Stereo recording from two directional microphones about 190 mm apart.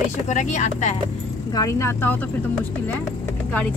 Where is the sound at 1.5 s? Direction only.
15° left (ahead or behind).